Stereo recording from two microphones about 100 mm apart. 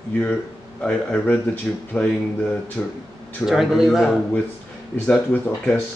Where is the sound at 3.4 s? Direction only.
5° right (ahead or behind).